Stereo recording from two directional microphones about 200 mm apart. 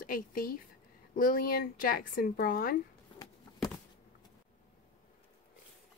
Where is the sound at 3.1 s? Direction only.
25° left (ahead or behind).